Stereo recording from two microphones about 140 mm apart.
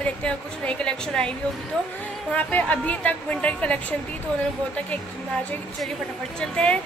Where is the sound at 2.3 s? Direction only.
10° left (ahead or behind).